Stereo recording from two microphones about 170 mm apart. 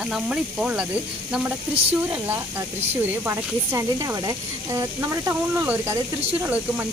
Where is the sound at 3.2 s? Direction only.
15° right (ahead or behind).